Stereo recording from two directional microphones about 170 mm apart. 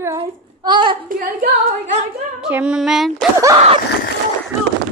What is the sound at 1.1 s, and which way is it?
Singing, 55° right (ahead or behind).